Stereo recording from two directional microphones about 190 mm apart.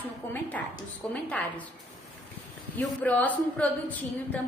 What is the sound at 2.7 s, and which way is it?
A woman's voice, 10° left (ahead or behind).